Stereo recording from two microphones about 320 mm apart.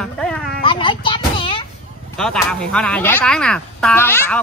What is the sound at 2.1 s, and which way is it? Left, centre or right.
Speech, centre.